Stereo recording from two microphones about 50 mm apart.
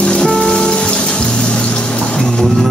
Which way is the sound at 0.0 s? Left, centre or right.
Centre.